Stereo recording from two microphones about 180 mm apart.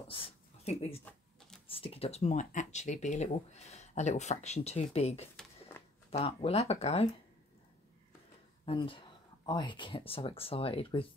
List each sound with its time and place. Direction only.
0.1 s a sound: 30° left (ahead or behind)
1.7 s speech: 30° left (ahead or behind)
8.6 s speech: 30° left (ahead or behind)